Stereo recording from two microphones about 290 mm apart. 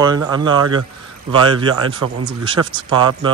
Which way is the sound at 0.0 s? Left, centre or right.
Centre.